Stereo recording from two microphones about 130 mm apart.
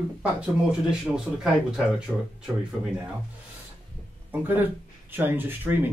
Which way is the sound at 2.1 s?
5° left (ahead or behind).